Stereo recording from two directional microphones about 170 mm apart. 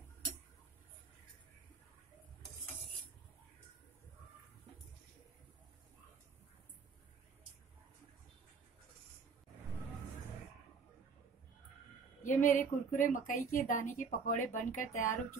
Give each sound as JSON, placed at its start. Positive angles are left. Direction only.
{"t": 12.2, "sound": "speech", "side_deg": 50}